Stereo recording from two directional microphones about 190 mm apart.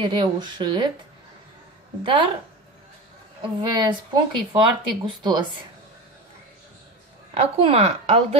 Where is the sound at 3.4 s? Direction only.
25° right (ahead or behind).